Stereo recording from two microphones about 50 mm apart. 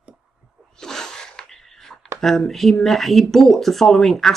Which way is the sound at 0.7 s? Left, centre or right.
Centre.